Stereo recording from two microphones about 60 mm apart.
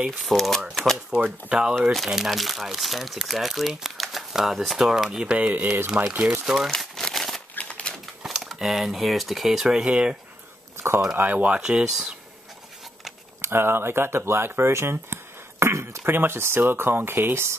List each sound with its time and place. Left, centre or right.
0.2 s speech: centre
0.9 s speech: centre
1.8 s speech: centre
5.5 s speech: right
6.4 s speech: centre
6.8 s crumpling: centre
7.5 s typewriter: left
8.2 s speech: centre
11.1 s speech: right
13.4 s speech: right
15.6 s a sound: right
16.0 s speech: right